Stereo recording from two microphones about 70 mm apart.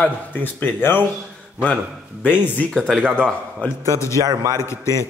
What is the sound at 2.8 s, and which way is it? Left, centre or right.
Speech, centre.